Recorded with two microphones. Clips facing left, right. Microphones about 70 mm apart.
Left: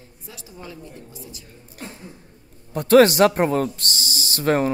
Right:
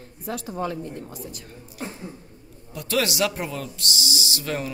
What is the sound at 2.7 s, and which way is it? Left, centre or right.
Speech, left.